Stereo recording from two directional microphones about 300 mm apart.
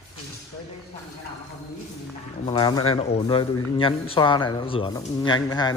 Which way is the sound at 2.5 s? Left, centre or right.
Centre.